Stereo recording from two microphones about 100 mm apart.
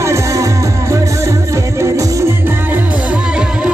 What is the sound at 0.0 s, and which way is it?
Music, 30° right (ahead or behind).